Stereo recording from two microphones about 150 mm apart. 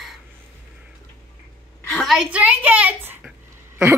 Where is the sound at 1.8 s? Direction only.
5° left (ahead or behind).